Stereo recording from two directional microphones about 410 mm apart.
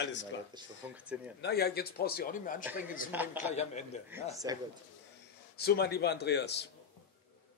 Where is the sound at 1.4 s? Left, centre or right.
Left.